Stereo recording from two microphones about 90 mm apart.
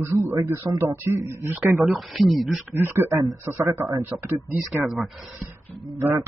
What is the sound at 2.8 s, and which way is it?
Speech, 25° right (ahead or behind).